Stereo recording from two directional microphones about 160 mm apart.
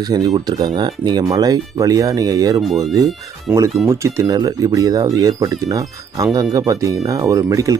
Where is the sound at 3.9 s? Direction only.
20° right (ahead or behind).